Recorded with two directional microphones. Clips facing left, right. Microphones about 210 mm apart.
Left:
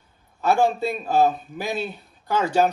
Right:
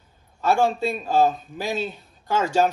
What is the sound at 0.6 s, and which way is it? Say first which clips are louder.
Speech: left 1 dB; 15° left (ahead or behind).